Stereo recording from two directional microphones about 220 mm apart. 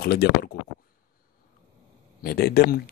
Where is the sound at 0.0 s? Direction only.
45° left (ahead or behind).